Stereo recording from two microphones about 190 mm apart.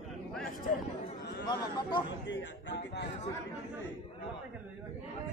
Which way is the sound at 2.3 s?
70° left (ahead or behind).